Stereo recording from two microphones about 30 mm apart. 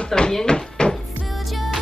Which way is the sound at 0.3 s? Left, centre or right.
Centre.